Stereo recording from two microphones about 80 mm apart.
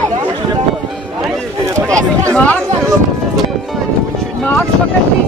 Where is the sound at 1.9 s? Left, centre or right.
Right.